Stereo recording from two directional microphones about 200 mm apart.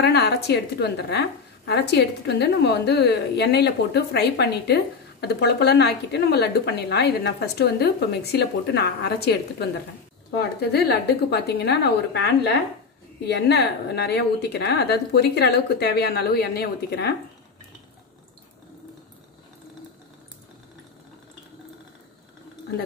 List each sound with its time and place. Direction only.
0.0 s a woman's voice: 55° left (ahead or behind)
10.6 s a woman's voice: 55° left (ahead or behind)